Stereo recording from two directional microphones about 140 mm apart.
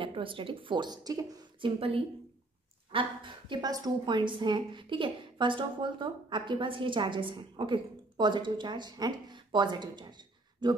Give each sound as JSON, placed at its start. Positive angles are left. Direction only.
{"t": 0.0, "sound": "speech", "side_deg": -40}
{"t": 1.8, "sound": "a woman's voice", "side_deg": -40}